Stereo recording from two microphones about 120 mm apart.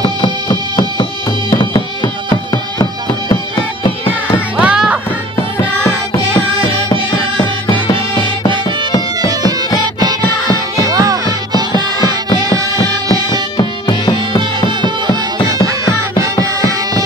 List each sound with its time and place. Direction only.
0.0 s music: 45° left (ahead or behind)
4.6 s music: 10° right (ahead or behind)
10.9 s music: 30° right (ahead or behind)
13.1 s music: 35° left (ahead or behind)